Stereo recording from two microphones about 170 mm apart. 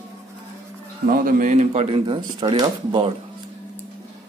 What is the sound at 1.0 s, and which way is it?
Speech, 55° right (ahead or behind).